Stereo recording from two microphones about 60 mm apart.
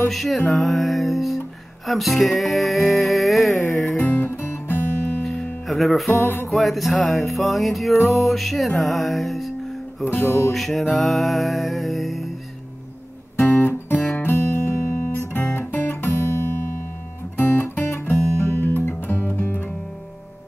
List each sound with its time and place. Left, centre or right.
0.1 s music: centre
4.0 s music: left
5.7 s music: centre
6.2 s music: left
6.5 s music: centre
10.2 s music: left
10.5 s music: centre
13.5 s guitar: left
14.1 s music: left
15.3 s guitar: left
17.4 s music: left
17.9 s guitar: left